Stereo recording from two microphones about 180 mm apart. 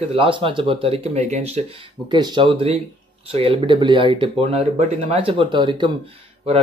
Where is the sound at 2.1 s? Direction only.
25° right (ahead or behind).